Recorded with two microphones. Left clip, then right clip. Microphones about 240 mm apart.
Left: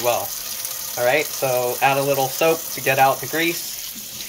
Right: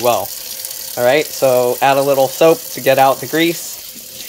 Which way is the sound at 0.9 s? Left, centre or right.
Right.